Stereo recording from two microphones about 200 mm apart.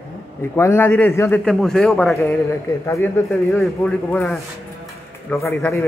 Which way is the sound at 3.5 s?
Centre (ahead or behind).